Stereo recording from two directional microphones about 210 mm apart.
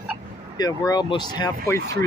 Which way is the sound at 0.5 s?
20° left (ahead or behind).